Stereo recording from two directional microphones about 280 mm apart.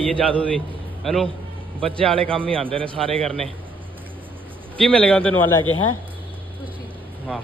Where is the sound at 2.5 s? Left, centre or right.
Centre.